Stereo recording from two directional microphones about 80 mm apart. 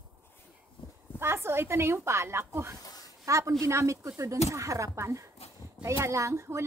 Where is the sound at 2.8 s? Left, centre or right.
Left.